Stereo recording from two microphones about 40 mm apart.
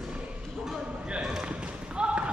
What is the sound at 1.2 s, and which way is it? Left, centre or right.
Basketball bounce, centre.